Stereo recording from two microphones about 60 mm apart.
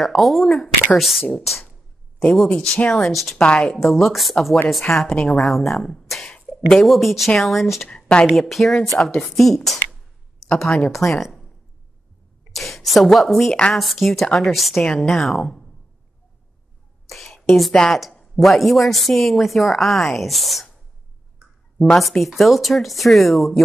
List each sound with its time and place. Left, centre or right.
0.0 s a woman's voice: centre
2.3 s a woman's voice: centre
3.3 s a woman's voice: centre
3.7 s a woman's voice: centre
4.9 s speech: centre
5.4 s speech: centre
7.9 s a woman's voice: centre
8.3 s a woman's voice: centre
10.5 s speech: centre
10.9 s a woman's voice: centre
12.5 s a woman's voice: centre
17.1 s a woman's voice: centre
21.7 s speech: centre
22.0 s a woman's voice: centre